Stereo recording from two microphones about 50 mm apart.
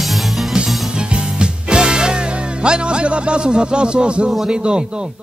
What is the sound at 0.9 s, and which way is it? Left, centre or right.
Music, centre.